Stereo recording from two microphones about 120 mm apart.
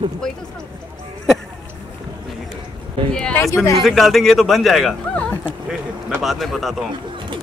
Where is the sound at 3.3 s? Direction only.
25° left (ahead or behind).